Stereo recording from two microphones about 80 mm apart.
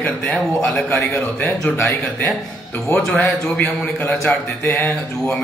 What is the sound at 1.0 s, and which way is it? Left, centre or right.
Speech, left.